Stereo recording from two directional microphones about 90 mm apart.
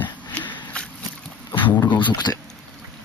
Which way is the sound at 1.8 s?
60° left (ahead or behind).